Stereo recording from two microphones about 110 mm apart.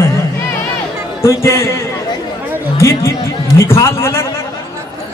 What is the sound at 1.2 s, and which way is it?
A man's voice, 25° left (ahead or behind).